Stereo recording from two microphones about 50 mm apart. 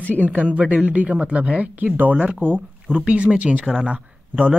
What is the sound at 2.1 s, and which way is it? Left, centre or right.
Speech, right.